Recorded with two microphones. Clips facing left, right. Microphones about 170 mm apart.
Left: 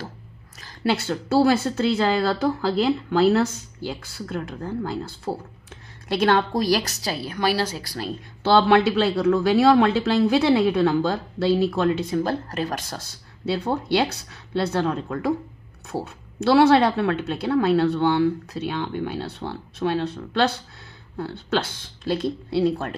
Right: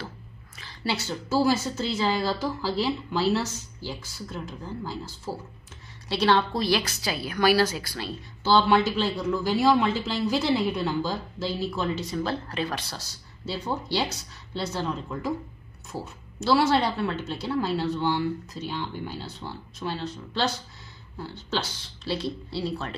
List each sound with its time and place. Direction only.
0.6 s a woman's voice: 50° left (ahead or behind)
8.5 s speech: 60° left (ahead or behind)